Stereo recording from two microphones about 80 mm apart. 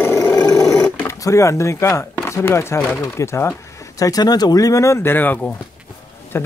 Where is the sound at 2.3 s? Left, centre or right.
Left.